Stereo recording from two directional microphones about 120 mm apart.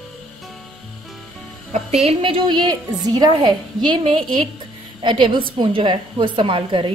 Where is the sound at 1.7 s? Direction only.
70° right (ahead or behind).